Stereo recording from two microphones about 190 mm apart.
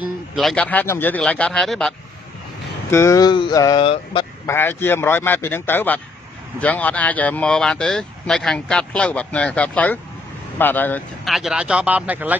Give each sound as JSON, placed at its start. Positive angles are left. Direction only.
{"t": 0.4, "sound": "speech", "side_deg": 5}
{"t": 2.9, "sound": "a sound", "side_deg": 15}
{"t": 4.5, "sound": "speech", "side_deg": 10}
{"t": 11.3, "sound": "speech", "side_deg": -5}